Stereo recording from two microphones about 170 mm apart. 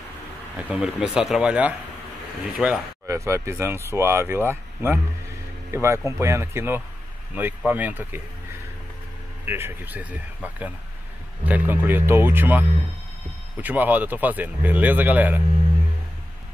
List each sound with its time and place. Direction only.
0.6 s speech: 5° right (ahead or behind)
3.1 s speech: 15° right (ahead or behind)
9.5 s speech: 15° right (ahead or behind)